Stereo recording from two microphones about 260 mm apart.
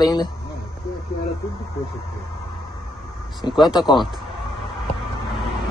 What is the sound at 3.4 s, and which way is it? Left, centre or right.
Speech, centre.